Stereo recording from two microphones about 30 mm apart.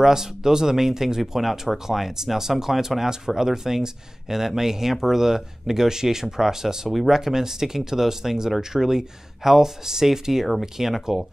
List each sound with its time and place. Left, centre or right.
0.0 s speech: centre